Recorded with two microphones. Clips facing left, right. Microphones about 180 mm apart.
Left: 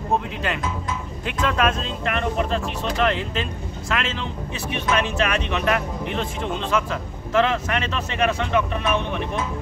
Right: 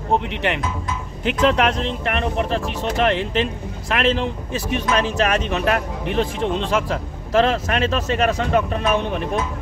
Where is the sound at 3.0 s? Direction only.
30° right (ahead or behind).